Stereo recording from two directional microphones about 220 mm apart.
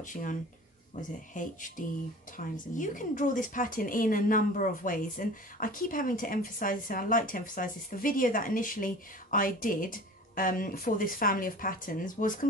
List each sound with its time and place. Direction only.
0.0 s speech: 35° left (ahead or behind)